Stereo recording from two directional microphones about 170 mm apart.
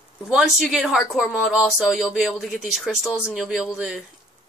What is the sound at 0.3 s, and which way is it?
Speech, centre (ahead or behind).